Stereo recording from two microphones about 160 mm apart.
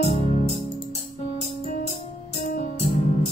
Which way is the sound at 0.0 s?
40° left (ahead or behind).